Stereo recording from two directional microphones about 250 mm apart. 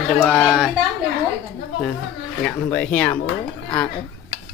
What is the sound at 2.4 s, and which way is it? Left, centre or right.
Speech, centre.